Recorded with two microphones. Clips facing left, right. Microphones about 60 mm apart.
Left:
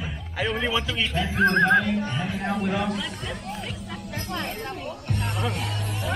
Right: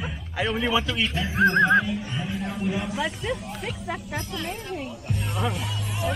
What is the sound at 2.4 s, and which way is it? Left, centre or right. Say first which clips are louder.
Speech: left 4 dB; left.